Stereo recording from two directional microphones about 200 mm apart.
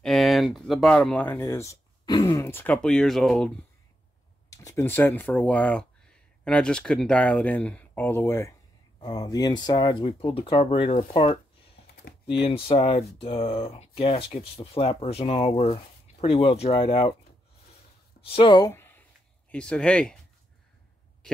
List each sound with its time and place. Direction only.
0.0 s speech: centre (ahead or behind)
4.5 s speech: 15° left (ahead or behind)
11.8 s computer keyboard: 30° left (ahead or behind)
12.4 s speech: 30° left (ahead or behind)
18.2 s speech: 25° left (ahead or behind); by 20.2 s 5° left (ahead or behind)